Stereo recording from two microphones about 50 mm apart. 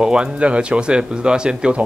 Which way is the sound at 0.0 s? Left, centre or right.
Centre.